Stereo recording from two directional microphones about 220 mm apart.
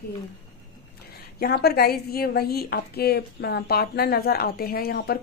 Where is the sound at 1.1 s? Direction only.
45° left (ahead or behind).